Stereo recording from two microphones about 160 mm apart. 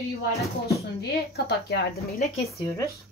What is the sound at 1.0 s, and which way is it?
Speech, 85° left.